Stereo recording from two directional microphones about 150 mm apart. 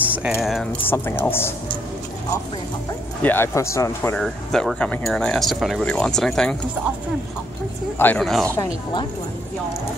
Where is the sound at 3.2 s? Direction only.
15° left (ahead or behind).